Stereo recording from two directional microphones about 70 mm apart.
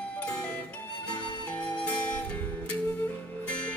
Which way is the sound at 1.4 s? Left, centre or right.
Centre.